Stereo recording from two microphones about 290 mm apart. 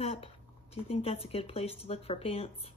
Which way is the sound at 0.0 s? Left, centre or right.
Left.